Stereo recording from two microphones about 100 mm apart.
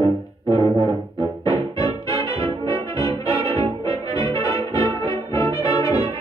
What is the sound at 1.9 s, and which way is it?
Brass instrument, 35° left (ahead or behind).